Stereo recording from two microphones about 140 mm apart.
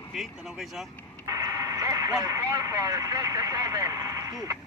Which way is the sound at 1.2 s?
25° right (ahead or behind).